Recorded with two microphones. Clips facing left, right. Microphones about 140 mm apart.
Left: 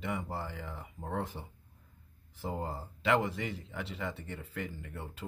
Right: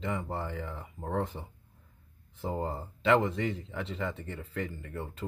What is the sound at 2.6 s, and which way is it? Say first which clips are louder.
Speech: right 5 dB; 5° left (ahead or behind).